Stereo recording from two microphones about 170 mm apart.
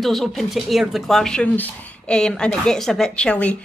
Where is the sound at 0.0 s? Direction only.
Centre (ahead or behind).